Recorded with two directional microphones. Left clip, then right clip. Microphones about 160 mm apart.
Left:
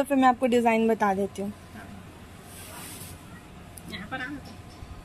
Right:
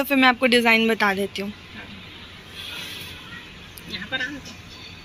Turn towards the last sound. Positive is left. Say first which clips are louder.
# right 7 dB
turn(degrees=10)  # may be behind; listen again after turning